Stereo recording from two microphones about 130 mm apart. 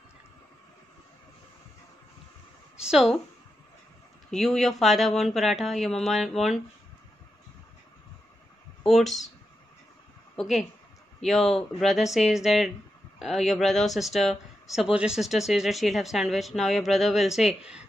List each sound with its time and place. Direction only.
2.8 s speech: 5° right (ahead or behind)
4.3 s speech: centre (ahead or behind)
8.8 s speech: centre (ahead or behind)
10.3 s speech: centre (ahead or behind)